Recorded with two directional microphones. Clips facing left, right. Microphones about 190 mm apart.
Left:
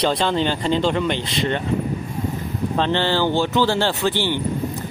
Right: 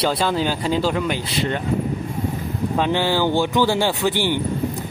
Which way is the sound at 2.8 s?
10° right (ahead or behind).